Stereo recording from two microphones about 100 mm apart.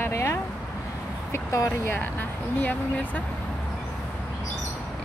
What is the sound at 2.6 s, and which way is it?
Speech, 15° left (ahead or behind).